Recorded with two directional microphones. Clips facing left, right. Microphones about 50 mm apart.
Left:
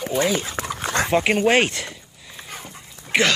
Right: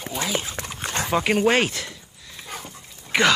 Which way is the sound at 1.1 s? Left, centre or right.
Centre.